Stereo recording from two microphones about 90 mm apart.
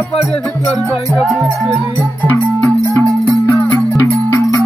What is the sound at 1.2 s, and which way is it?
Speech, 5° right (ahead or behind).